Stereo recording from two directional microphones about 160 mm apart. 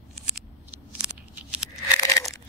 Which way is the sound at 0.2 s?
5° right (ahead or behind).